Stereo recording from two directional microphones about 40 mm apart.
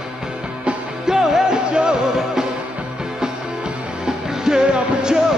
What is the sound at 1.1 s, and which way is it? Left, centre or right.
Music, centre.